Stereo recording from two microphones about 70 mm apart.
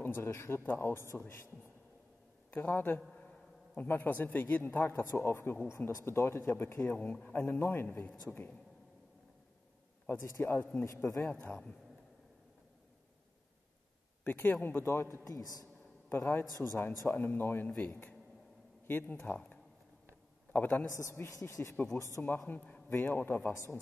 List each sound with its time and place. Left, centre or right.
0.0 s speech: left
2.5 s a man's voice: left
10.0 s speech: left
11.2 s speech: left
14.2 s speech: left
15.2 s a woman's voice: left
16.1 s speech: left
20.9 s speech: left
22.5 s speech: left